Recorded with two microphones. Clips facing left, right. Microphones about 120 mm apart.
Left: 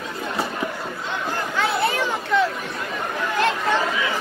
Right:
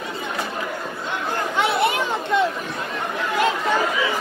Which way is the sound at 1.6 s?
20° right (ahead or behind).